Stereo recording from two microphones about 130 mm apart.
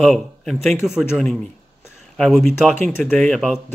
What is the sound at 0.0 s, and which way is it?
Speech, 5° left (ahead or behind).